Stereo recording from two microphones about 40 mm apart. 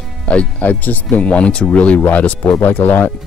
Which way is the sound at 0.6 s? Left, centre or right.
Left.